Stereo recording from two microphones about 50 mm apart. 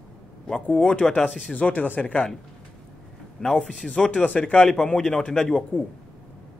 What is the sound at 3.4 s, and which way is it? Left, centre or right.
Speech, centre.